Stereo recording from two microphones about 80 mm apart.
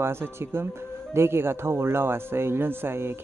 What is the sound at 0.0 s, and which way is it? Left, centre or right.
Speech, right.